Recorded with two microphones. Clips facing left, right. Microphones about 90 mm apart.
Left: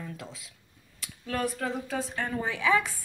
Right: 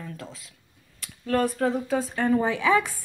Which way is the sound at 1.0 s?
5° left (ahead or behind).